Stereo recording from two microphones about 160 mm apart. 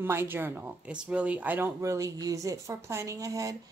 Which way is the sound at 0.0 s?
15° right (ahead or behind).